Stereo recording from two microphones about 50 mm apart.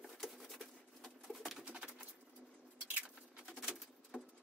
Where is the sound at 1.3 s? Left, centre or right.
Centre.